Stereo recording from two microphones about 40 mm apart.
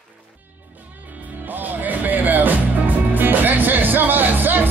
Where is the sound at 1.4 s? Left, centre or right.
Right.